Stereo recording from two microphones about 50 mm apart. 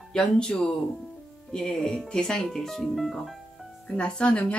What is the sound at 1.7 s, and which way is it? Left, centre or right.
Speech, centre.